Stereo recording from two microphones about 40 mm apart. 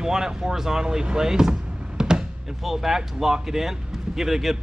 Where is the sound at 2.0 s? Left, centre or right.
Centre.